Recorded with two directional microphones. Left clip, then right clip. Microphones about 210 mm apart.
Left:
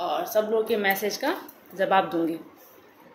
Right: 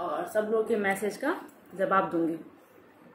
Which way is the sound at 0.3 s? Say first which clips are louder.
Left 2 dB; 10° right (ahead or behind).